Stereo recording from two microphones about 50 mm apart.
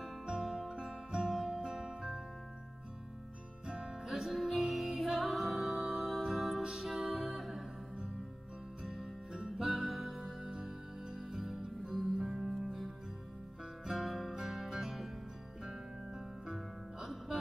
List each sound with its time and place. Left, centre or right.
0.0 s music: centre
3.6 s music: centre
8.8 s music: centre